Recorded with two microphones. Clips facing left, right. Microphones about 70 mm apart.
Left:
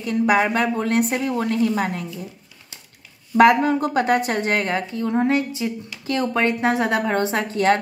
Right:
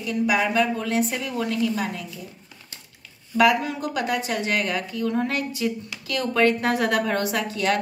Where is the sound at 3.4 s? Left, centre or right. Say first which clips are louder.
Left 5 dB; left.